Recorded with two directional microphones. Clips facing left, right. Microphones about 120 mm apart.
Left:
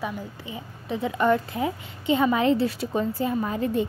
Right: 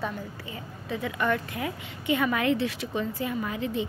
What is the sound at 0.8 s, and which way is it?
A woman's voice, 30° left (ahead or behind).